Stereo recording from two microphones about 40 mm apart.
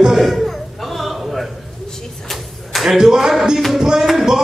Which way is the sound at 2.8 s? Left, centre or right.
Centre.